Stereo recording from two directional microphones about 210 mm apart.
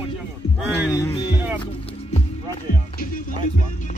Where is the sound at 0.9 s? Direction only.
15° left (ahead or behind).